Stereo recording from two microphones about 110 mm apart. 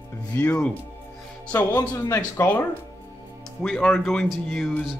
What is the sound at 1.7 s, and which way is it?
Speech, 35° left (ahead or behind).